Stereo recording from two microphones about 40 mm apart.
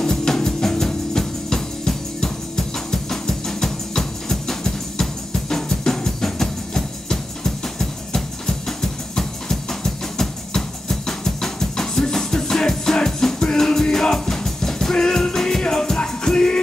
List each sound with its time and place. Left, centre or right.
0.0 s music: centre